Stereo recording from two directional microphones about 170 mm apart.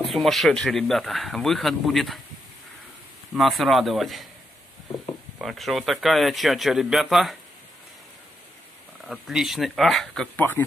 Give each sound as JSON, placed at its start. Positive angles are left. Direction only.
{"t": 0.0, "sound": "speech", "side_deg": 0}
{"t": 3.3, "sound": "speech", "side_deg": 0}
{"t": 5.4, "sound": "speech", "side_deg": 0}
{"t": 9.0, "sound": "speech", "side_deg": -5}
{"t": 10.3, "sound": "speech", "side_deg": 10}